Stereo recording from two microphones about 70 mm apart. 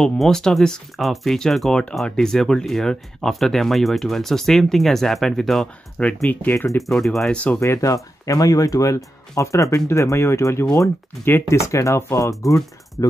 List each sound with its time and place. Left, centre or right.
0.0 s speech: centre
7.6 s speech: left